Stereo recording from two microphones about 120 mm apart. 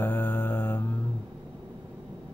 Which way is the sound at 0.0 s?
15° left (ahead or behind).